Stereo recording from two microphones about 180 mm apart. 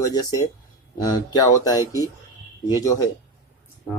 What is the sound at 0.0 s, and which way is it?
Speech, 20° left (ahead or behind).